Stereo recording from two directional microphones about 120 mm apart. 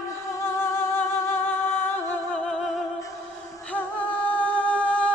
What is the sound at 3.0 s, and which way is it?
Music, 30° left (ahead or behind).